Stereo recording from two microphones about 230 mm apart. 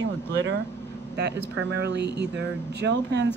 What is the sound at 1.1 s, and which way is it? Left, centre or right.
A woman's voice, right.